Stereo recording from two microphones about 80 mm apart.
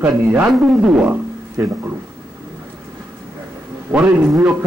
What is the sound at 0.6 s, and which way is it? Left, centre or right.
Speech, centre.